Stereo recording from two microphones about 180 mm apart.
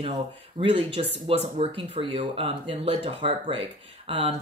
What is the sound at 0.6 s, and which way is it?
Speech, 30° right (ahead or behind).